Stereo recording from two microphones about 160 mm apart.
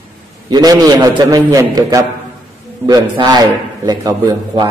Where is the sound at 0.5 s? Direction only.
25° right (ahead or behind).